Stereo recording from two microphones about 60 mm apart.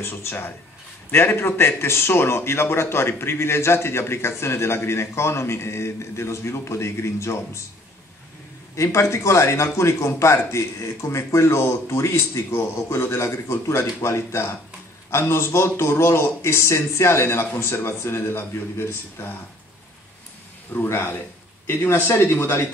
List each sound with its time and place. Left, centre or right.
0.1 s speech: left
8.7 s speech: left
20.7 s speech: left